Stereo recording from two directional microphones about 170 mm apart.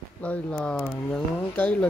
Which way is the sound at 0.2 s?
10° left (ahead or behind).